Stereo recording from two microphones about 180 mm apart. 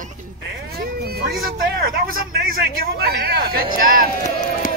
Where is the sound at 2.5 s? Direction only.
60° right (ahead or behind).